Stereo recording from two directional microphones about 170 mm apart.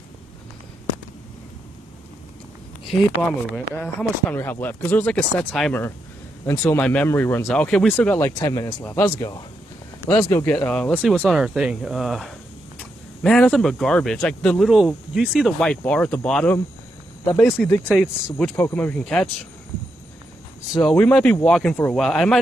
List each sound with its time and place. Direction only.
3.2 s speech: 10° left (ahead or behind)
6.4 s speech: 15° left (ahead or behind)
8.4 s speech: 25° left (ahead or behind)
17.9 s speech: centre (ahead or behind)
20.8 s speech: 5° left (ahead or behind)